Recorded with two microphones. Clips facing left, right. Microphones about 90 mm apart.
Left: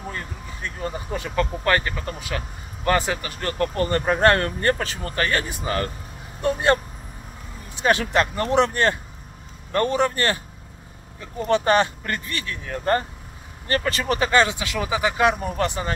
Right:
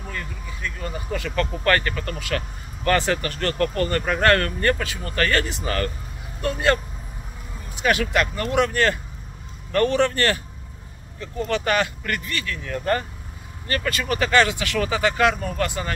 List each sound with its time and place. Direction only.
0.1 s speech: 30° left (ahead or behind)
7.8 s speech: 30° left (ahead or behind)
11.4 s speech: 30° left (ahead or behind)